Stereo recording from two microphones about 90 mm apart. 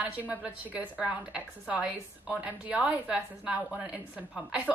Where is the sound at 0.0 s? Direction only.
15° right (ahead or behind).